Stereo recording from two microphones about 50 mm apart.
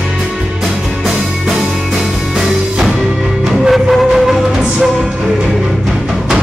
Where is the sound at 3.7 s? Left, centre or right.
Centre.